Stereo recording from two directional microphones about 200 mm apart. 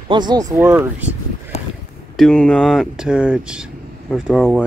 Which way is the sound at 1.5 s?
30° left (ahead or behind).